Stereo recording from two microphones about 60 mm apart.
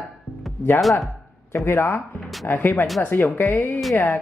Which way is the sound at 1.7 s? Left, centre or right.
Left.